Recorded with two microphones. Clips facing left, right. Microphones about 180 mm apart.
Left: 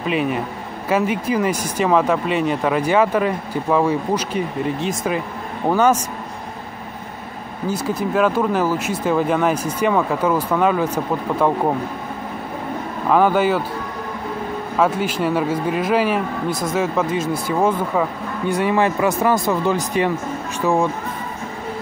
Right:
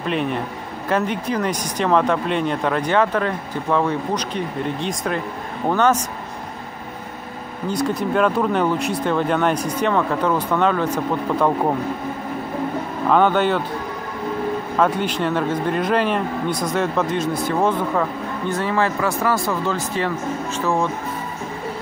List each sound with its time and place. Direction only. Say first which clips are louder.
0.0 s speech: left 2 dB; 5° left (ahead or behind)
7.6 s speech: even; 5° left (ahead or behind)
13.1 s speech: left 1 dB; 5° left (ahead or behind)
14.8 s speech: left 2 dB; 5° left (ahead or behind)